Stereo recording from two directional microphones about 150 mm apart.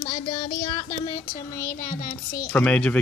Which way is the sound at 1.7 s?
65° left (ahead or behind).